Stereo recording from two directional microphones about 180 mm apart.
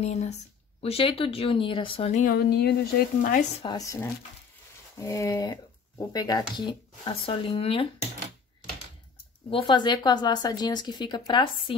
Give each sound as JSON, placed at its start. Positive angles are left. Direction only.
{"t": 0.0, "sound": "speech", "side_deg": 35}
{"t": 2.2, "sound": "speech", "side_deg": 60}
{"t": 3.2, "sound": "speech", "side_deg": 45}
{"t": 3.6, "sound": "speech", "side_deg": 20}
{"t": 9.5, "sound": "speech", "side_deg": 25}